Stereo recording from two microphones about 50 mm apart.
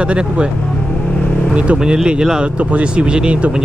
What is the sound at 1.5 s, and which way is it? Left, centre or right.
Speech, centre.